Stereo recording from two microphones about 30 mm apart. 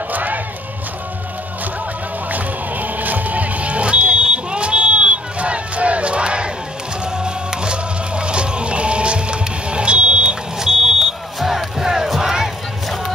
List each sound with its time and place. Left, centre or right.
0.1 s crowd: right
2.3 s music: right
10.6 s smoke detector: centre
11.3 s music: centre
12.2 s crowd: centre